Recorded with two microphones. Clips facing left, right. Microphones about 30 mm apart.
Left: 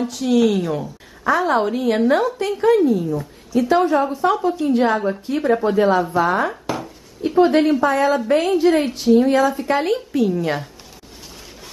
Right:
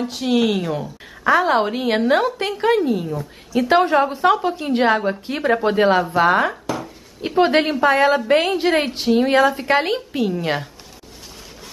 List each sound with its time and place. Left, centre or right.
0.1 s a woman's voice: right
0.4 s speech: centre
1.2 s a woman's voice: right
9.9 s a woman's voice: right